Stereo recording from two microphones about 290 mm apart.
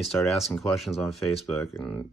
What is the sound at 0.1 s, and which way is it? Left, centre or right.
Speech, centre.